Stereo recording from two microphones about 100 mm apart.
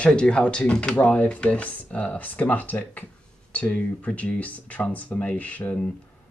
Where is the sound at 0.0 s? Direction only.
10° left (ahead or behind).